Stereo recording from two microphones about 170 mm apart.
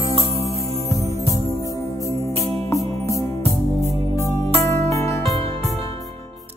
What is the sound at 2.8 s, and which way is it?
Music, 35° right (ahead or behind).